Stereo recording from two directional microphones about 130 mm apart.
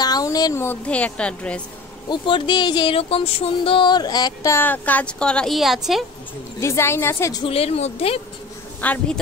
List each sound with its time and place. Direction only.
0.0 s speech: 30° left (ahead or behind)
0.8 s a woman's voice: 10° left (ahead or behind)
2.0 s a sound: 40° left (ahead or behind); by 6.0 s centre (ahead or behind)
6.6 s a woman's voice: 20° left (ahead or behind)
7.4 s a woman's voice: 50° left (ahead or behind)
8.8 s a woman's voice: 10° left (ahead or behind)